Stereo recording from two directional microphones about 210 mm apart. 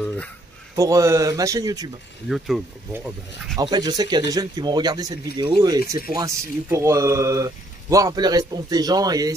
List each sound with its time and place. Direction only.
0.7 s speech: 15° right (ahead or behind)
2.2 s speech: centre (ahead or behind)
3.5 s speech: 20° right (ahead or behind)